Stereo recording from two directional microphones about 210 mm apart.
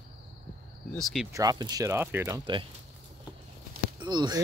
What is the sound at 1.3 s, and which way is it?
Speech, 15° right (ahead or behind).